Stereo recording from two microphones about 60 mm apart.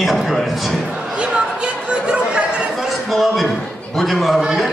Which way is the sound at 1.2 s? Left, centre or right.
Centre.